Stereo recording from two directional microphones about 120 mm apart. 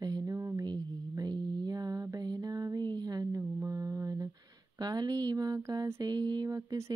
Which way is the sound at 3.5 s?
25° right (ahead or behind).